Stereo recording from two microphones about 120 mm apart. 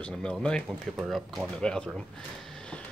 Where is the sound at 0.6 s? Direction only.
15° right (ahead or behind).